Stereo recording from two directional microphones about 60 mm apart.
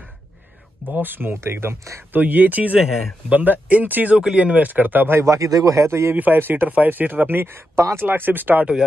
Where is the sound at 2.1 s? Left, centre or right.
Right.